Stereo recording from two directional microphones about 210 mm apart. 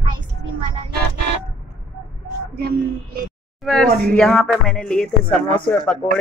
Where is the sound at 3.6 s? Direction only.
Centre (ahead or behind).